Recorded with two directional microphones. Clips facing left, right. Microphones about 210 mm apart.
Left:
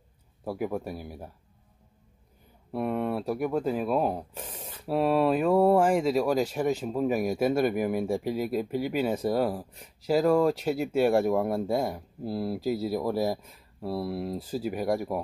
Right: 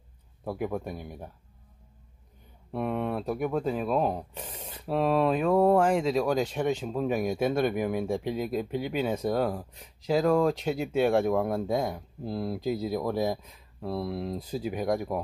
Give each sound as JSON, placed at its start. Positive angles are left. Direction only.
{"t": 0.5, "sound": "speech", "side_deg": 5}
{"t": 2.7, "sound": "speech", "side_deg": 5}